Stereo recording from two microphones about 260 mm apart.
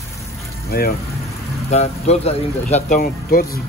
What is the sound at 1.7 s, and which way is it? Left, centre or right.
A man's voice, left.